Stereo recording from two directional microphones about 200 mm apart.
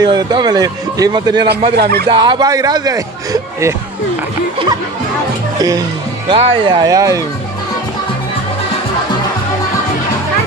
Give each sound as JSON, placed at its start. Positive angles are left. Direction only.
{"t": 0.0, "sound": "a man's voice", "side_deg": -20}
{"t": 1.8, "sound": "speech", "side_deg": -50}
{"t": 2.0, "sound": "a man's voice", "side_deg": -20}
{"t": 6.2, "sound": "a man's voice", "side_deg": -30}